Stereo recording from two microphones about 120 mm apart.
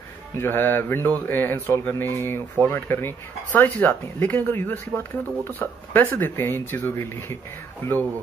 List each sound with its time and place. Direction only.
0.3 s speech: 20° left (ahead or behind)